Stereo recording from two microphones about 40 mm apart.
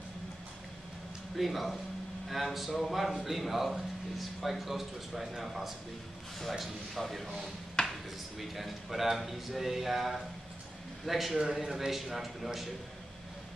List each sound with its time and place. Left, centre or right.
1.3 s speech: centre
7.8 s a sound: left
8.4 s speech: centre